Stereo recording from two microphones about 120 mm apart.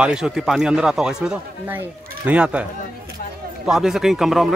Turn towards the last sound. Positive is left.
turn(degrees=0)  # may be behind; listen again after turning